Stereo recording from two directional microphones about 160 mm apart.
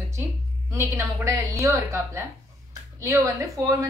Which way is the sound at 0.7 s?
15° right (ahead or behind).